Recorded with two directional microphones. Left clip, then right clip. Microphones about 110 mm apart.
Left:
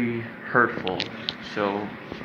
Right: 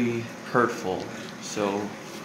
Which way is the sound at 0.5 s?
15° right (ahead or behind).